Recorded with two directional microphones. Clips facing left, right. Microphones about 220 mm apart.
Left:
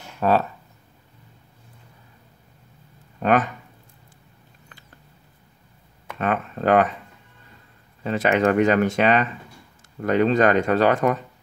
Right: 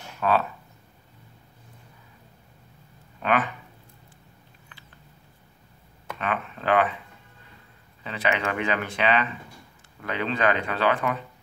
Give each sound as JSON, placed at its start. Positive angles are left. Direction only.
{"t": 0.2, "sound": "speech", "side_deg": 40}
{"t": 3.2, "sound": "speech", "side_deg": 45}
{"t": 6.1, "sound": "speech", "side_deg": 45}
{"t": 8.0, "sound": "speech", "side_deg": 45}